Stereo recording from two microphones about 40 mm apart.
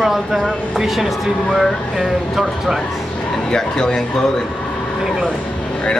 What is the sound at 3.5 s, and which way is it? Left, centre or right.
Speech, centre.